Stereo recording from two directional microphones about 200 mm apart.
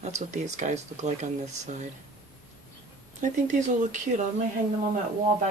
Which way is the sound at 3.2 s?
40° right (ahead or behind).